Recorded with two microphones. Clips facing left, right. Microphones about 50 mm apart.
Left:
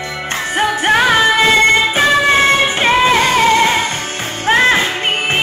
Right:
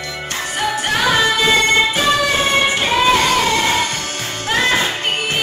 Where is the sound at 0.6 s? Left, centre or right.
Left.